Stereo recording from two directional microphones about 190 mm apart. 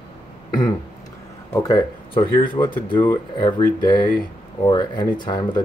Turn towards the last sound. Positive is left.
turn(degrees=25)  # may be behind; listen again after turning